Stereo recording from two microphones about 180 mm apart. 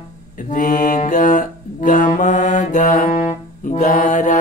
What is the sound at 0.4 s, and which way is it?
Mantra, 50° left (ahead or behind).